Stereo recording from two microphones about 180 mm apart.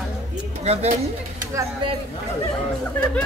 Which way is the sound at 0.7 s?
35° right (ahead or behind).